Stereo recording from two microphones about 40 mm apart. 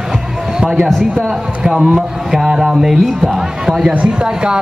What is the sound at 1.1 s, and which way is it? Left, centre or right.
A man's voice, centre.